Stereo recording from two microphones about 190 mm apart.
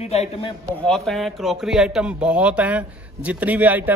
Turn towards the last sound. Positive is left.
turn(degrees=-10)  # may be behind; listen again after turning